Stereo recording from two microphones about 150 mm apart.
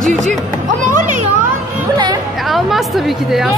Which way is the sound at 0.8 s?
55° right (ahead or behind).